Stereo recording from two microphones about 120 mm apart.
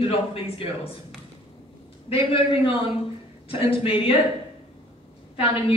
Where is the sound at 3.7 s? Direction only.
50° left (ahead or behind).